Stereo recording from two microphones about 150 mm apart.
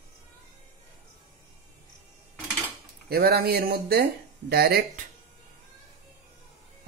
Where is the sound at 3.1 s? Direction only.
90° right.